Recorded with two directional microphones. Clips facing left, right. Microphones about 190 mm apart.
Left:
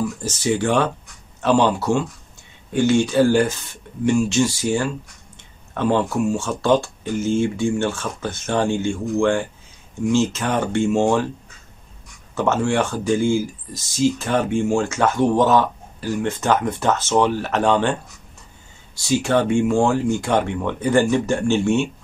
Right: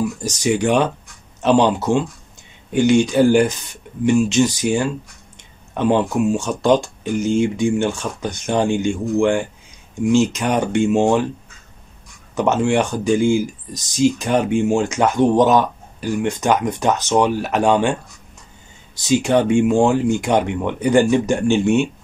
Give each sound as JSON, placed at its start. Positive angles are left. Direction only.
{"t": 0.0, "sound": "speech", "side_deg": -15}
{"t": 12.4, "sound": "speech", "side_deg": -15}
{"t": 18.9, "sound": "speech", "side_deg": -20}